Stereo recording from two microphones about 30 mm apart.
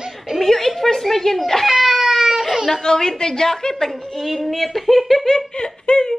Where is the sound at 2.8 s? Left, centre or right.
Left.